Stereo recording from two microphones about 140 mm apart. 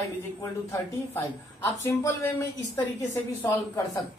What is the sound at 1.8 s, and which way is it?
Speech, 20° left (ahead or behind).